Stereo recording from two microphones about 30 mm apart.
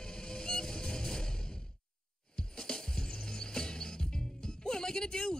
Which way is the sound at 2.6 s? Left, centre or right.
Left.